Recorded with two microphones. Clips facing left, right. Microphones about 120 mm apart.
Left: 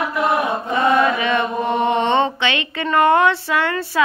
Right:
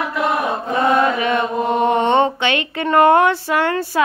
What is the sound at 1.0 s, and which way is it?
Chant, 45° right (ahead or behind).